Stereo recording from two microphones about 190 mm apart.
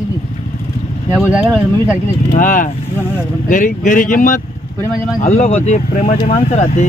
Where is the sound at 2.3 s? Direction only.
45° left (ahead or behind).